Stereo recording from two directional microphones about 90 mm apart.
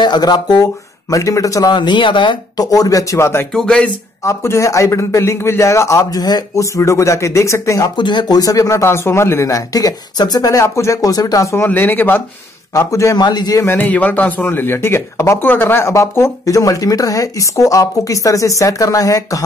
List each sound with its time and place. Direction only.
0.0 s speech: 50° left (ahead or behind)
1.1 s a man's voice: 40° left (ahead or behind)
1.7 s speech: 55° left (ahead or behind)
2.5 s a man's voice: 45° left (ahead or behind)
3.5 s speech: 10° left (ahead or behind)
4.2 s a man's voice: 35° left (ahead or behind)
7.9 s a man's voice: 60° left (ahead or behind); by 11.5 s 45° left (ahead or behind)
11.5 s speech: 20° left (ahead or behind)
12.7 s a man's voice: 35° left (ahead or behind)
13.2 s speech: 50° left (ahead or behind)
13.7 s speech: 20° left (ahead or behind)
15.9 s a man's voice: 35° left (ahead or behind)